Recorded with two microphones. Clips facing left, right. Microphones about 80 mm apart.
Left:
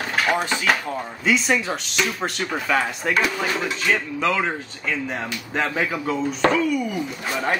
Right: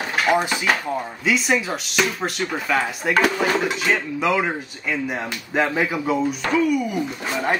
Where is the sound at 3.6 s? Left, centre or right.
Centre.